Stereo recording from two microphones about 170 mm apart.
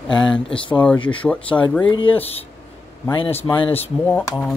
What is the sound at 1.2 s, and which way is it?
Speech, 5° left (ahead or behind).